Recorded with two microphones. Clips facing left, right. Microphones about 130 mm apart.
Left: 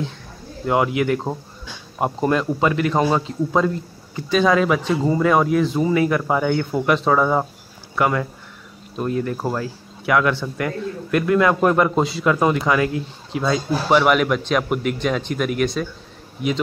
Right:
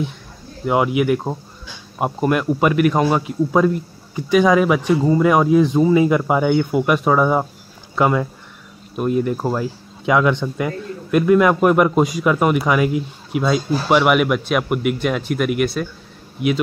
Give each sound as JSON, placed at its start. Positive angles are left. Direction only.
{"t": 0.7, "sound": "speech", "side_deg": -15}